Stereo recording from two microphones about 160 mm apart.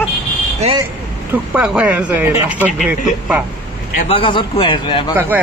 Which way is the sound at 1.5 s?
10° right (ahead or behind).